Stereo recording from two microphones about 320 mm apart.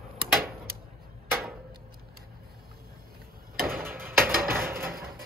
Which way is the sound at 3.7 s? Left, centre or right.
Centre.